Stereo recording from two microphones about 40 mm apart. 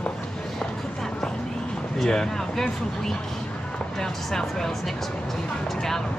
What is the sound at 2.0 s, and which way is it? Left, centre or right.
Speech, centre.